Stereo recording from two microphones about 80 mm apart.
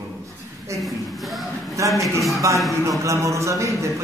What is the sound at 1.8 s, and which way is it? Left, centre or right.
Speech, right.